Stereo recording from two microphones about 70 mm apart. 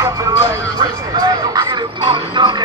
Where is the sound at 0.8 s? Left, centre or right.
Right.